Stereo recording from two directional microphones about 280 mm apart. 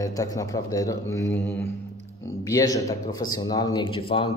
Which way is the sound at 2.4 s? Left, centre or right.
Centre.